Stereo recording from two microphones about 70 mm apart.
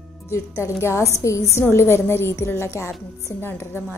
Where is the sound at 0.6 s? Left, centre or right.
Left.